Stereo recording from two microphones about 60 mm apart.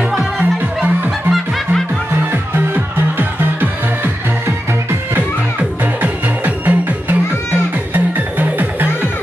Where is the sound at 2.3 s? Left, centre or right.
Right.